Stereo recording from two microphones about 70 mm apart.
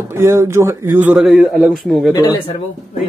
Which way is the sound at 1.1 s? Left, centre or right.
Centre.